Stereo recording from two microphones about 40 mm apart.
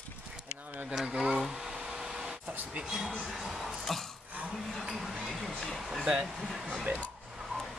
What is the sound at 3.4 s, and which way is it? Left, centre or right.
Speech, centre.